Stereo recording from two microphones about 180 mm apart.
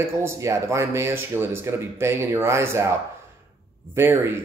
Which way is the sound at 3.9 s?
15° right (ahead or behind).